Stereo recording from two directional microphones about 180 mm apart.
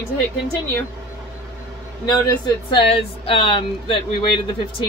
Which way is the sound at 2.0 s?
25° left (ahead or behind).